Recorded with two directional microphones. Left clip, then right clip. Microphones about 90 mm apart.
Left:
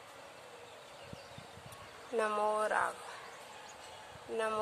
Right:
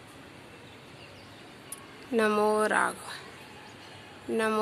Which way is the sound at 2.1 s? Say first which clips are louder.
Right 7 dB; 30° right (ahead or behind).